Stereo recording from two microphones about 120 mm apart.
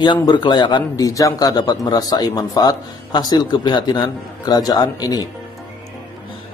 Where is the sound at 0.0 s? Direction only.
40° left (ahead or behind).